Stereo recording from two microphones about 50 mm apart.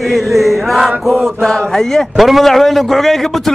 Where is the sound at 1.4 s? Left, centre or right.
Centre.